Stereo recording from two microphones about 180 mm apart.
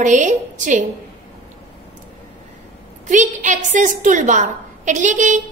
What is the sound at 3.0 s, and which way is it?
A woman's voice, 45° right (ahead or behind).